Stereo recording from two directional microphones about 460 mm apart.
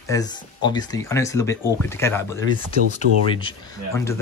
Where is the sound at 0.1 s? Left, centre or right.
Centre.